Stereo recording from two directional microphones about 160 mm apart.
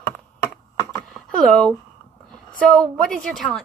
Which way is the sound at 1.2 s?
Centre (ahead or behind).